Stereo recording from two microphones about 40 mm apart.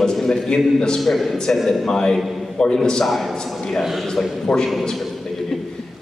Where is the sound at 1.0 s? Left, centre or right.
Centre.